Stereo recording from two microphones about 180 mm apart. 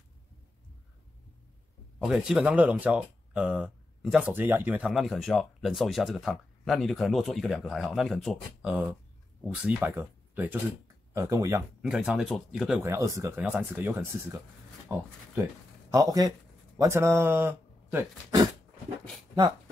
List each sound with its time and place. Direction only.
2.0 s speech: 5° right (ahead or behind)
11.8 s speech: 5° right (ahead or behind)
12.8 s speech: 15° right (ahead or behind)